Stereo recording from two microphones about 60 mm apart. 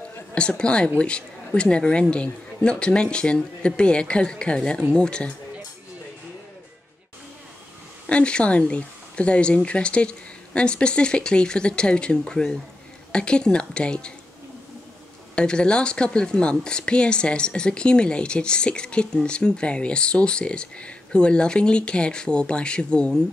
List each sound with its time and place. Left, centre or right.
0.3 s speech: centre
8.1 s speech: centre
15.3 s speech: centre